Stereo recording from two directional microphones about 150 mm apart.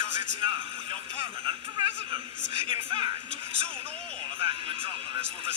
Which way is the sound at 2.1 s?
35° right (ahead or behind).